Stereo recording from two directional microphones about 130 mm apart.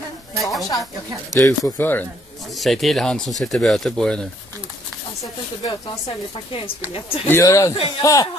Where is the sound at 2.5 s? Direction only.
Centre (ahead or behind).